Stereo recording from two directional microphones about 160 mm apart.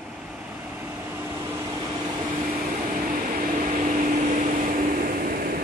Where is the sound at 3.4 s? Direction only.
55° right (ahead or behind).